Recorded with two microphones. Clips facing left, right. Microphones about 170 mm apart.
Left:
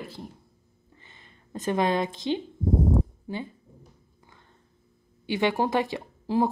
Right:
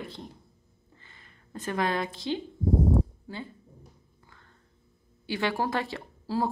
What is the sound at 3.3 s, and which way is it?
Speech, 20° left (ahead or behind).